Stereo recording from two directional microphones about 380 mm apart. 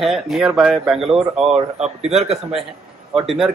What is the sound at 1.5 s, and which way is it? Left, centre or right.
Speech, centre.